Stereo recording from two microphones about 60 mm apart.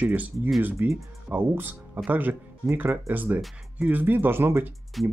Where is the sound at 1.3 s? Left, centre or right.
Right.